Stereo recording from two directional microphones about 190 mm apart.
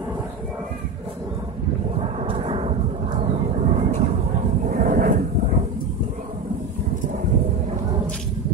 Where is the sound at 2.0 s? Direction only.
30° right (ahead or behind).